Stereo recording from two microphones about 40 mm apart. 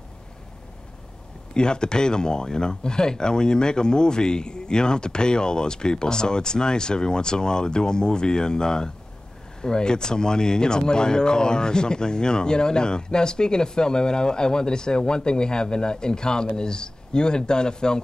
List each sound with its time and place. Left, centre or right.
1.5 s speech: left